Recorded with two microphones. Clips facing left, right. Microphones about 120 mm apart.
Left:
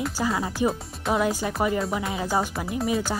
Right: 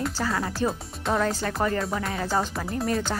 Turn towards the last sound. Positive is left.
turn(degrees=5)  # may be behind; listen again after turning